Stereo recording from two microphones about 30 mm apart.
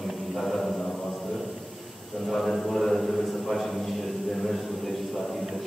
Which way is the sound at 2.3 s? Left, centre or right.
Centre.